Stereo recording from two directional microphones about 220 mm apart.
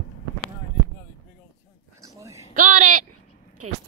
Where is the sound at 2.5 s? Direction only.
35° right (ahead or behind).